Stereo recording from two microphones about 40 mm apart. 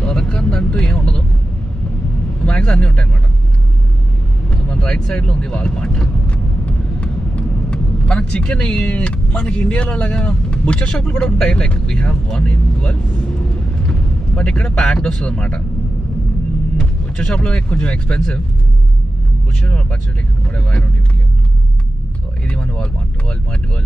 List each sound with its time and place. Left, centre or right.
0.1 s vehicle: centre
2.4 s vehicle: left
4.6 s speech: centre
6.3 s vehicle: left
8.9 s speech: left
11.2 s speech: centre
11.5 s speech: left
14.3 s speech: left
16.8 s vehicle: left
17.3 s speech: centre
19.6 s speech: left
22.5 s speech: left